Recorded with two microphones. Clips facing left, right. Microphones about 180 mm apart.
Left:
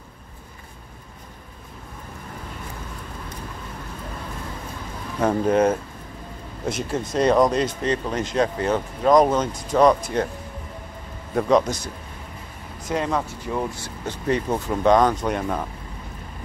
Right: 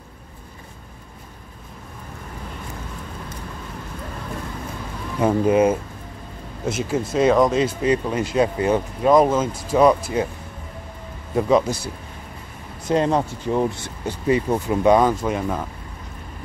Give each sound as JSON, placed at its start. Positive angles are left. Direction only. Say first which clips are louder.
{"t": 5.2, "sound": "a man's voice", "louder": "right 2 dB", "side_deg": -10}
{"t": 11.3, "sound": "a man's voice", "louder": "right 1 dB", "side_deg": -5}
{"t": 12.9, "sound": "speech", "louder": "right 5 dB", "side_deg": -30}
{"t": 14.0, "sound": "speech", "louder": "right 3 dB", "side_deg": -10}